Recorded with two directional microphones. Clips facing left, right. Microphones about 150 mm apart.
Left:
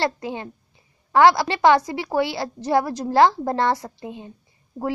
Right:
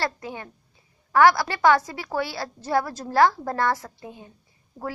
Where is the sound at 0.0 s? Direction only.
25° left (ahead or behind).